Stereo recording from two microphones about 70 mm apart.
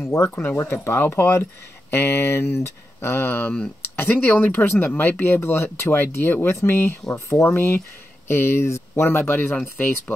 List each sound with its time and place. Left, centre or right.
0.0 s speech: left